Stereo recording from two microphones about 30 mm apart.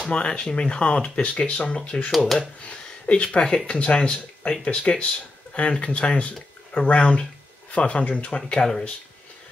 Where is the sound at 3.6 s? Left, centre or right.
Left.